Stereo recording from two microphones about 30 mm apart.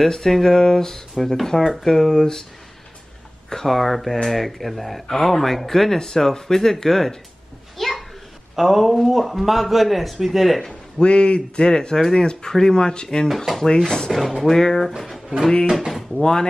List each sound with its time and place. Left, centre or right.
0.1 s speech: centre
1.6 s speech: centre
1.9 s speech: centre
3.4 s speech: centre
5.0 s speech: centre
7.7 s children playing: centre
8.5 s speech: centre
11.0 s speech: left; by 14.1 s centre
14.1 s speech: centre
14.5 s speech: centre
14.9 s speech: centre
16.2 s speech: left